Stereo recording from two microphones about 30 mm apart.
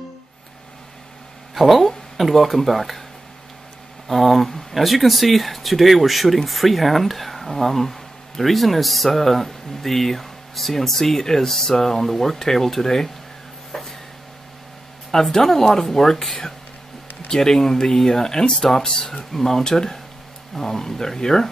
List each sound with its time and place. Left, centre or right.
1.5 s a sound: centre
2.2 s speech: centre
4.1 s speech: centre
13.7 s vehicle: centre
15.3 s speech: centre